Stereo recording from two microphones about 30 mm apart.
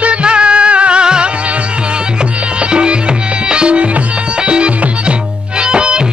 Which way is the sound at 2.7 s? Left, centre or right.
Right.